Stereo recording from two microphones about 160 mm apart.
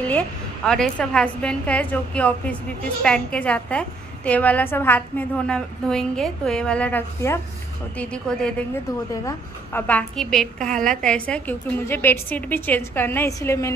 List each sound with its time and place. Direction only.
0.7 s a woman's voice: 5° left (ahead or behind)
9.1 s a woman's voice: 15° left (ahead or behind)